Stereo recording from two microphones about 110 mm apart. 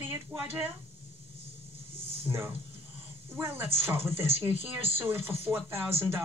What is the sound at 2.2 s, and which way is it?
Speech, 20° right (ahead or behind).